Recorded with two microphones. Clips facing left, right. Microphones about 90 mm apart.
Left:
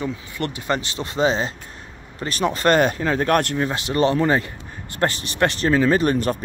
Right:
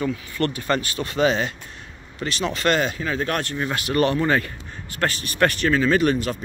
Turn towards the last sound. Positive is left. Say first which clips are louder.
# left 4 dB
turn(degrees=45)  # may be behind; listen again after turning